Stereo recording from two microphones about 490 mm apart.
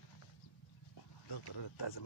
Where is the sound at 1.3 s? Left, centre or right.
Left.